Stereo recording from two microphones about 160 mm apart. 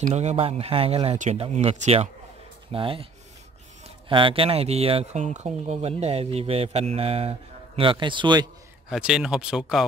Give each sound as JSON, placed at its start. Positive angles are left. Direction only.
{"t": 0.0, "sound": "speech", "side_deg": -45}
{"t": 4.1, "sound": "speech", "side_deg": -35}
{"t": 8.8, "sound": "speech", "side_deg": -5}